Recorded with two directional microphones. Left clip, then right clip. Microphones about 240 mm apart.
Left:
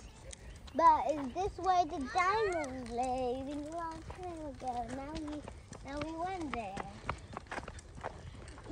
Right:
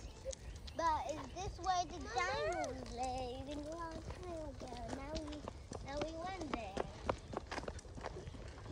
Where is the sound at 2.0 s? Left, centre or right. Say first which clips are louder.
Left 7 dB; right.